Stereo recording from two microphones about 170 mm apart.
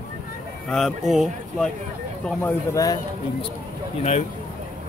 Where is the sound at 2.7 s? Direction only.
20° left (ahead or behind).